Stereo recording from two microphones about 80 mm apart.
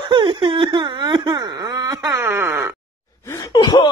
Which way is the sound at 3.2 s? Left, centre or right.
Left.